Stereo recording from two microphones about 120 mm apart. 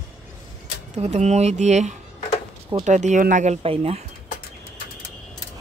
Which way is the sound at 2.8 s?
90° right.